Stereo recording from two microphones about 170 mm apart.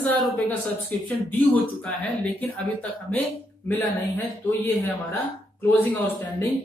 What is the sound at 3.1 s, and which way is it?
A woman's voice, 10° left (ahead or behind).